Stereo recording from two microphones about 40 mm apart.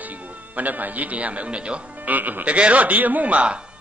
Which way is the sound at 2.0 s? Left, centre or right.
Right.